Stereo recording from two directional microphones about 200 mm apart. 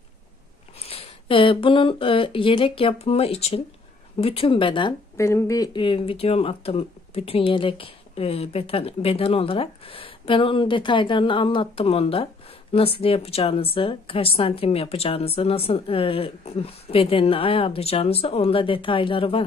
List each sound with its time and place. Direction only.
0.8 s speech: 30° left (ahead or behind)